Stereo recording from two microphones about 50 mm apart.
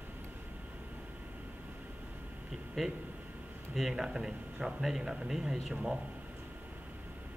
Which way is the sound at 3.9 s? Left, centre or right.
Centre.